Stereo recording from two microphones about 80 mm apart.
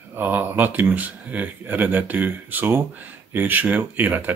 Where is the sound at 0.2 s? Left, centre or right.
Right.